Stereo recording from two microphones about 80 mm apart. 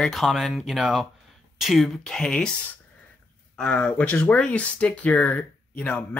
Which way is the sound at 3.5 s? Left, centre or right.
Centre.